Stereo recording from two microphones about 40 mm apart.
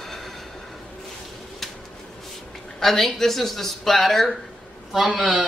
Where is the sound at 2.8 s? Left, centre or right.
Centre.